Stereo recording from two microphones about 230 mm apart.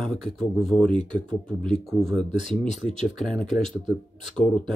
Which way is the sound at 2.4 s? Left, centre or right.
Right.